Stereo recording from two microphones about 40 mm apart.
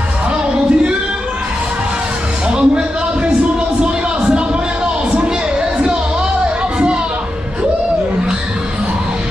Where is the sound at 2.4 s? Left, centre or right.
Right.